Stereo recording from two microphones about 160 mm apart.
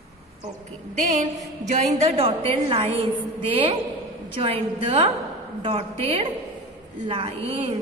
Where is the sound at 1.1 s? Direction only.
50° right (ahead or behind).